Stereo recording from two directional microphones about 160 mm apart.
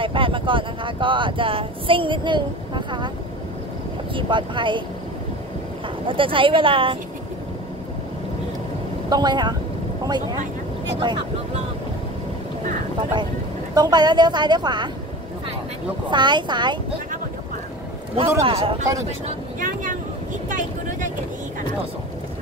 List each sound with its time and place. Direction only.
0.0 s speech: 35° right (ahead or behind)
4.1 s speech: 30° right (ahead or behind)
6.0 s speech: 35° right (ahead or behind)
9.1 s a woman's voice: 25° right (ahead or behind)
13.7 s a woman's voice: 25° right (ahead or behind)
16.1 s a woman's voice: 30° right (ahead or behind)
18.1 s speech: 35° right (ahead or behind)
19.0 s speech: 50° right (ahead or behind)
20.4 s vehicle: 55° right (ahead or behind)